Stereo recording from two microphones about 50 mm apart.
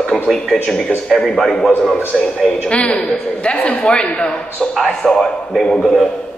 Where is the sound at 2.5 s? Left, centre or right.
Left.